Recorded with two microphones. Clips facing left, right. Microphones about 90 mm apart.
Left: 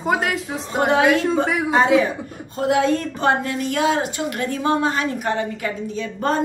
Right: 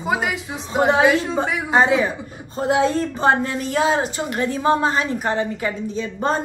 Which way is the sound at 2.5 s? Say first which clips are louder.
Even; 35° right (ahead or behind).